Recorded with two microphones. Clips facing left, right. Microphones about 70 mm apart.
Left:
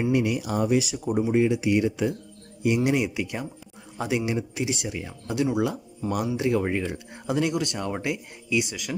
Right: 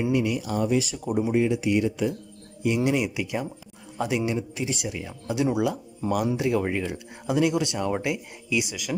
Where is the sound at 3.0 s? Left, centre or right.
Centre.